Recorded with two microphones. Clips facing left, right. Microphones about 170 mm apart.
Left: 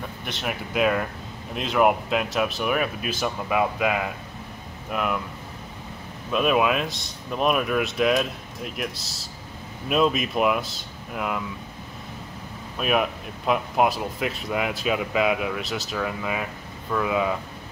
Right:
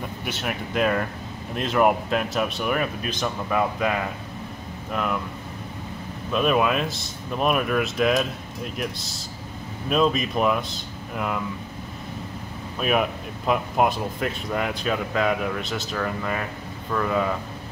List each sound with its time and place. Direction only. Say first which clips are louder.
0.2 s speech: even; 5° right (ahead or behind)
6.3 s speech: even; 5° left (ahead or behind)
12.7 s speech: right 1 dB; centre (ahead or behind)